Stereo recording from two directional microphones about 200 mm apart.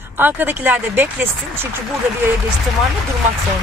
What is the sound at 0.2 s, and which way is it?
Speech, 10° right (ahead or behind).